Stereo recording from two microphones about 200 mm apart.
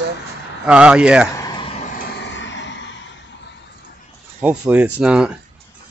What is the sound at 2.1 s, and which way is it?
Vehicle, 65° left (ahead or behind).